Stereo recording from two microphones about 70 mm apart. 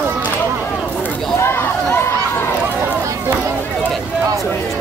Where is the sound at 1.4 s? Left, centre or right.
Left.